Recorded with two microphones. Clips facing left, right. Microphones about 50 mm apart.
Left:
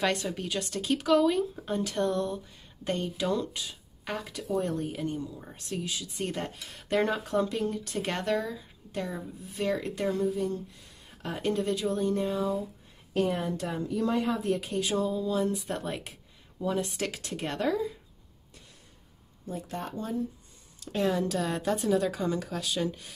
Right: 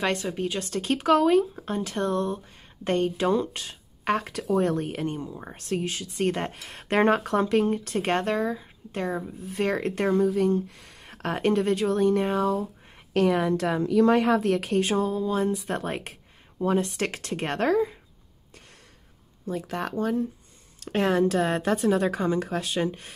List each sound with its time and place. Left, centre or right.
0.0 s speech: right
10.7 s speech: right
13.1 s a woman's voice: right
14.6 s speech: right
19.5 s speech: right
20.8 s speech: right